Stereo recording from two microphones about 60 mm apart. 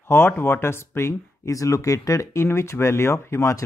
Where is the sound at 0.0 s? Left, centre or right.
Left.